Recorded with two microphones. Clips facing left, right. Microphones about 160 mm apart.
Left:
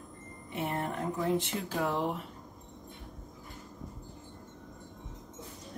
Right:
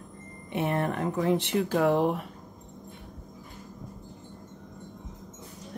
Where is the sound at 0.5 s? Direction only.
70° right (ahead or behind).